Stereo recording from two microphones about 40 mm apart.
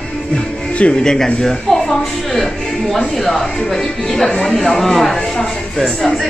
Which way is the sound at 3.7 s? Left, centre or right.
Left.